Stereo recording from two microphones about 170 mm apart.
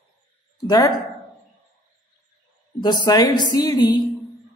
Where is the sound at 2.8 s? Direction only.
25° left (ahead or behind).